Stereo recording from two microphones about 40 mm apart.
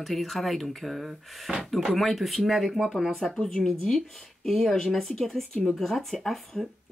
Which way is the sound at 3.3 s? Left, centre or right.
Centre.